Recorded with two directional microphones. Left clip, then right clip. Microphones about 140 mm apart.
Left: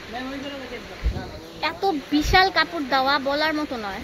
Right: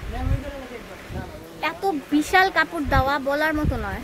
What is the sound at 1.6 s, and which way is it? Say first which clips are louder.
A woman's voice: left 1 dB; 25° right (ahead or behind).